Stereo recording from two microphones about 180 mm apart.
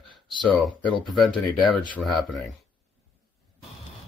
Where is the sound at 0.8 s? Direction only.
25° left (ahead or behind).